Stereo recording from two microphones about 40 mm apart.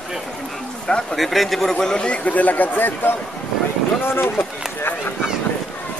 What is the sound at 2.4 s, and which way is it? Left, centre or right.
Speech, left.